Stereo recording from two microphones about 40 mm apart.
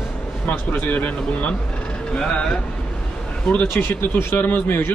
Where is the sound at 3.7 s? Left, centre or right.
Left.